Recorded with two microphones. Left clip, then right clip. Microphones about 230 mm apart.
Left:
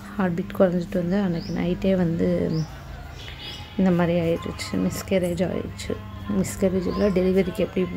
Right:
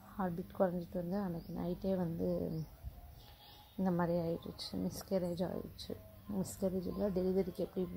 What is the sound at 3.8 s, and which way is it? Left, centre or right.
Speech, centre.